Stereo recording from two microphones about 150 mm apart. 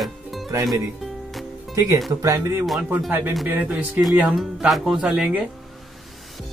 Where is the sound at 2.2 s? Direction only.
20° right (ahead or behind).